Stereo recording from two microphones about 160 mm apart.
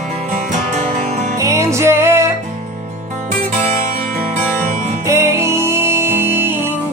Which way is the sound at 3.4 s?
50° right (ahead or behind).